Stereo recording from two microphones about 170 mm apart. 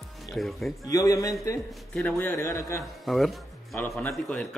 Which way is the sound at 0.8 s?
20° left (ahead or behind).